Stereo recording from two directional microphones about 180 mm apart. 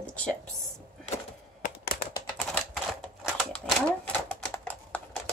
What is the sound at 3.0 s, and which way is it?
Typewriter, centre (ahead or behind).